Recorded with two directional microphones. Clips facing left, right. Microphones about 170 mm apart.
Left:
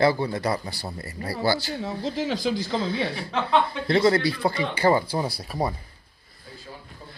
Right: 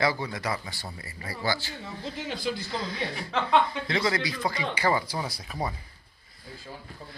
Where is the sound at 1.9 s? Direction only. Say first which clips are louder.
Left 8 dB; 90° left.